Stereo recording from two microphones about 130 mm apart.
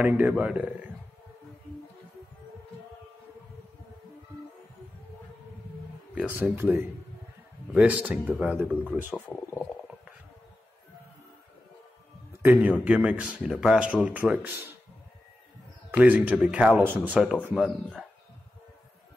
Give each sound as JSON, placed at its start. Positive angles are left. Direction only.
{"t": 0.0, "sound": "a man's voice", "side_deg": -10}
{"t": 6.1, "sound": "a man's voice", "side_deg": -10}
{"t": 9.1, "sound": "speech", "side_deg": 10}
{"t": 12.3, "sound": "a man's voice", "side_deg": -15}
{"t": 16.0, "sound": "a man's voice", "side_deg": -10}